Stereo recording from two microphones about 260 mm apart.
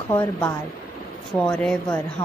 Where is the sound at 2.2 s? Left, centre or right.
Centre.